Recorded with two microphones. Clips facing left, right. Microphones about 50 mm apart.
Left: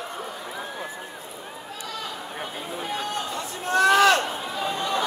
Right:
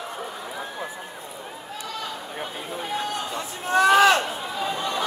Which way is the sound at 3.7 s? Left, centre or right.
Centre.